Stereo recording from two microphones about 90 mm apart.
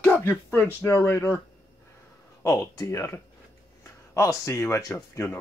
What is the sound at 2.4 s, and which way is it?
Speech, 30° left (ahead or behind).